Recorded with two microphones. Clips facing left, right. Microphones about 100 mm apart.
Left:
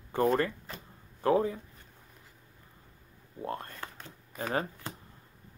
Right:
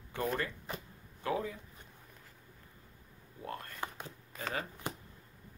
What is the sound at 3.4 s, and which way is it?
Speech, 30° left (ahead or behind).